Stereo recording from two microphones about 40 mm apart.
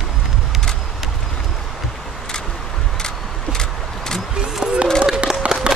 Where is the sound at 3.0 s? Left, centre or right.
Centre.